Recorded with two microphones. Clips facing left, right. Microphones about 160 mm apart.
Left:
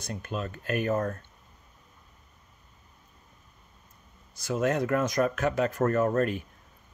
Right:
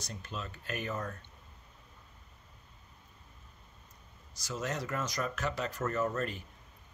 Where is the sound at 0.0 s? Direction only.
55° left (ahead or behind).